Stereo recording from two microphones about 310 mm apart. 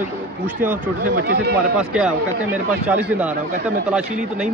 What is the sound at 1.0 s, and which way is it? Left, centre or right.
Speech, right.